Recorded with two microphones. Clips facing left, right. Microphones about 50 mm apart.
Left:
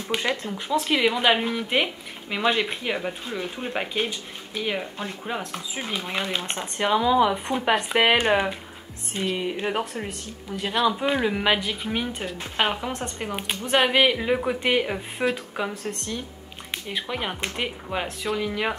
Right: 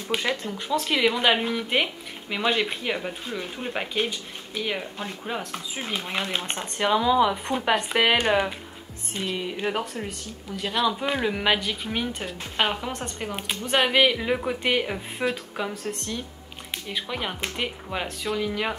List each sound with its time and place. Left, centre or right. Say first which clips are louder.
0.3 s speech: left 1 dB; centre
1.0 s speech: right 1 dB; centre
10.5 s speech: left 2 dB; centre
10.9 s speech: left 2 dB; centre
16.7 s speech: left 1 dB; centre